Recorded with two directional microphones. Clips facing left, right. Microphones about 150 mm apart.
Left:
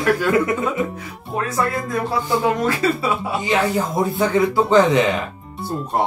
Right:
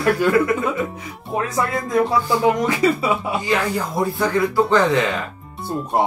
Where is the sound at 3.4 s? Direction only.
20° left (ahead or behind).